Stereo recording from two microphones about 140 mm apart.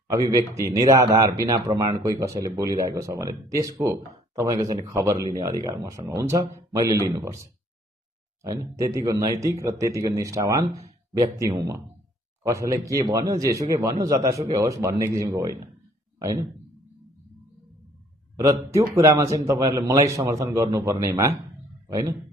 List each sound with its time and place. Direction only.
0.1 s a man's voice: 25° right (ahead or behind)
8.4 s a man's voice: 25° right (ahead or behind)
18.3 s a man's voice: 25° right (ahead or behind)